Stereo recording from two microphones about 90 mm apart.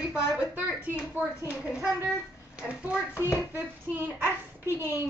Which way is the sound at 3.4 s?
20° right (ahead or behind).